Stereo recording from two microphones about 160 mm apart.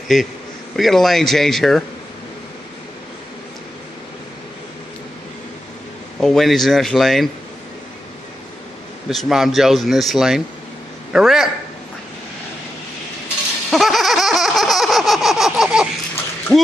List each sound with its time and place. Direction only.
0.1 s speech: centre (ahead or behind)
6.1 s speech: centre (ahead or behind)
9.1 s speech: centre (ahead or behind)
13.7 s baby laughter: centre (ahead or behind)
16.5 s a sound: 20° right (ahead or behind)